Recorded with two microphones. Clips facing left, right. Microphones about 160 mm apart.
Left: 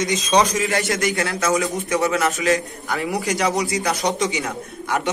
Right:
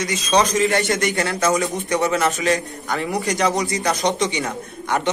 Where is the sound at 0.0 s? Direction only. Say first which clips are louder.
Left 1 dB; 20° left (ahead or behind).